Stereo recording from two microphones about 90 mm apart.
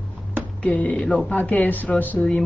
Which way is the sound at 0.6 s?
15° left (ahead or behind).